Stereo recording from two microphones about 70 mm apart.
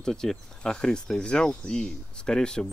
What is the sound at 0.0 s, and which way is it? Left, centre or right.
Speech, centre.